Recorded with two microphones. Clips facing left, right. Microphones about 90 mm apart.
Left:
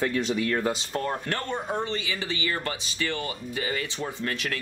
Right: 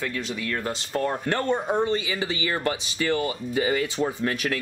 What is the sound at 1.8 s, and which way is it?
Speech, 15° right (ahead or behind).